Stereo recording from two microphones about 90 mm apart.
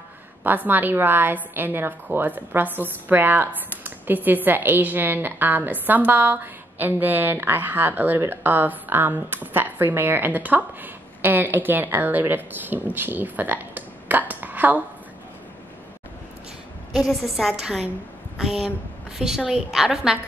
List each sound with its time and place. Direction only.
0.4 s a woman's voice: 20° right (ahead or behind)
16.9 s a woman's voice: 5° right (ahead or behind)